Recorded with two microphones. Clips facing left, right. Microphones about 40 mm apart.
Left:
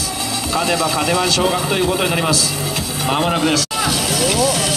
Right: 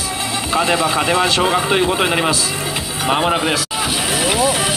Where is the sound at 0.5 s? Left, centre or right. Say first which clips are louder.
Right 2 dB; right.